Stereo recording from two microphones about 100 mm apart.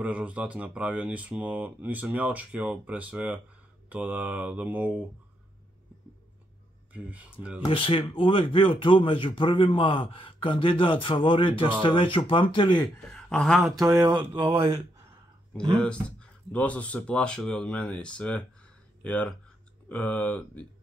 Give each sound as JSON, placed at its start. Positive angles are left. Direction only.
{"t": 0.0, "sound": "speech", "side_deg": -15}
{"t": 6.9, "sound": "speech", "side_deg": -15}
{"t": 7.7, "sound": "a man's voice", "side_deg": 65}
{"t": 13.1, "sound": "speech", "side_deg": 5}
{"t": 14.0, "sound": "a sound", "side_deg": -50}
{"t": 15.8, "sound": "speech", "side_deg": 10}